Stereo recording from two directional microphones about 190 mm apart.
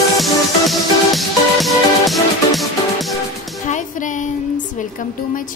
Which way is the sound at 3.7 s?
40° left (ahead or behind).